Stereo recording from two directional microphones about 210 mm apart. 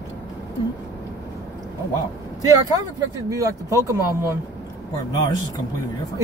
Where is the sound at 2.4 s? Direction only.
15° right (ahead or behind).